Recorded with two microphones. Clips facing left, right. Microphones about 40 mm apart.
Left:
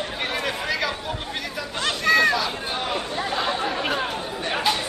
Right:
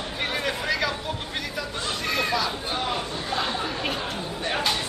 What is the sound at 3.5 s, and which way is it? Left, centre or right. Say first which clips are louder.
Chatter: left 3 dB; left.